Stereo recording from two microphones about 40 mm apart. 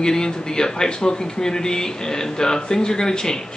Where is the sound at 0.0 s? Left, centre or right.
Centre.